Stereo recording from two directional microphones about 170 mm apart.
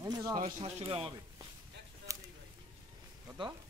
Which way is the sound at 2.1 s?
20° right (ahead or behind).